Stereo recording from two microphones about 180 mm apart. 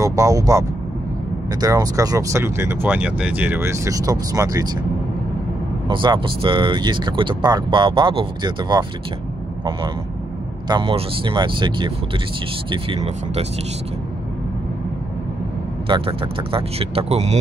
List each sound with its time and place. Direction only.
0.0 s speech: 20° right (ahead or behind)
5.9 s speech: 25° right (ahead or behind)
10.7 s speech: 30° right (ahead or behind)
15.9 s speech: 30° right (ahead or behind)